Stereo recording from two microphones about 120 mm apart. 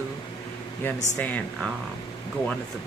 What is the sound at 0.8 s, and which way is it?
Speech, 15° left (ahead or behind).